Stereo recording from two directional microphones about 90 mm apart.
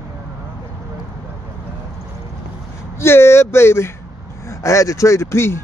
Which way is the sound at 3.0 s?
30° left (ahead or behind).